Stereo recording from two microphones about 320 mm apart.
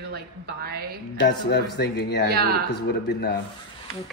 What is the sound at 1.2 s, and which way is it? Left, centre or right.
Speech, left.